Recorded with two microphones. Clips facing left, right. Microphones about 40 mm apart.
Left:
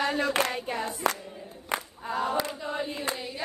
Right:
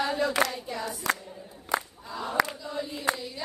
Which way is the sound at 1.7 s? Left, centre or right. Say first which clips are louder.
Even; left.